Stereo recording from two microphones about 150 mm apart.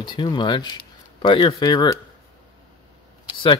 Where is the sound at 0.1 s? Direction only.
30° left (ahead or behind).